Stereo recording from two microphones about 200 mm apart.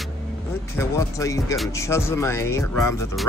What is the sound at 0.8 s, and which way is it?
Music, 15° left (ahead or behind).